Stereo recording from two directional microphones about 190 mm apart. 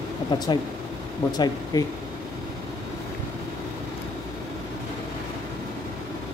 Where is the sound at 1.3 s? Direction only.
20° left (ahead or behind).